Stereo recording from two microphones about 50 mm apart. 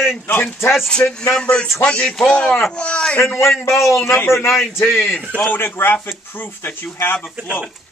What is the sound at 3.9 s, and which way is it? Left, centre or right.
A man's voice, left.